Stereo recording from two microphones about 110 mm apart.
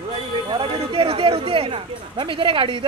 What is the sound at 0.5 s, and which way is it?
Speech, 50° right (ahead or behind).